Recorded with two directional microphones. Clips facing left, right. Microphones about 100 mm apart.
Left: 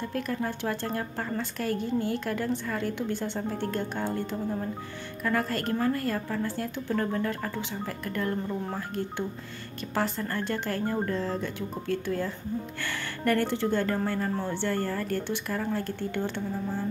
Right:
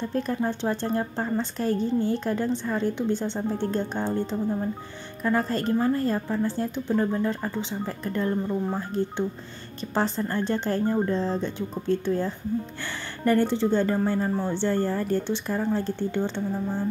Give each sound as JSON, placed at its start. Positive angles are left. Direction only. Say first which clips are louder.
{"t": 0.1, "sound": "speech", "louder": "right 5 dB", "side_deg": -25}
{"t": 9.9, "sound": "speech", "louder": "right 4 dB", "side_deg": -25}